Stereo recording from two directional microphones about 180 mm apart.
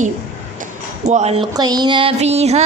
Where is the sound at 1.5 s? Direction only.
20° right (ahead or behind).